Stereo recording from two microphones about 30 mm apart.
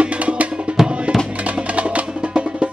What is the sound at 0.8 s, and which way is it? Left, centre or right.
Music, centre.